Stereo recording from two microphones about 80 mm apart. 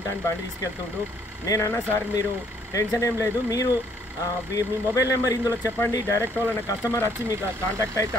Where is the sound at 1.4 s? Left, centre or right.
Left.